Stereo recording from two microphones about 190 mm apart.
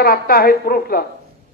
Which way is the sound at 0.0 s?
50° left (ahead or behind).